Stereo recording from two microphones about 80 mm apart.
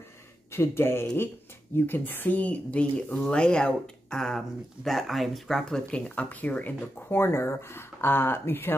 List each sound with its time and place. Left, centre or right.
0.5 s speech: left